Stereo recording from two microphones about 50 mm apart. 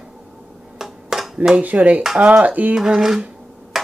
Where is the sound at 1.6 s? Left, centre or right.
Right.